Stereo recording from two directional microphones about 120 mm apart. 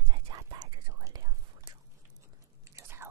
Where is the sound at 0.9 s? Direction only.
30° right (ahead or behind).